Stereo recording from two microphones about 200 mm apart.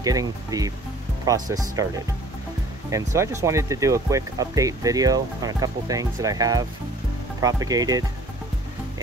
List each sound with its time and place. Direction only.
0.0 s speech: 20° right (ahead or behind)
2.9 s speech: 15° right (ahead or behind)